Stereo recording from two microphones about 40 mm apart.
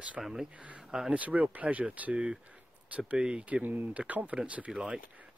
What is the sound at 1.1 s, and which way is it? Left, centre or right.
Speech, right.